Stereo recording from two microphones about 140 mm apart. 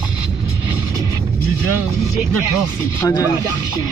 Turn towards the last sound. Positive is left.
turn(degrees=25)  # may be behind; listen again after turning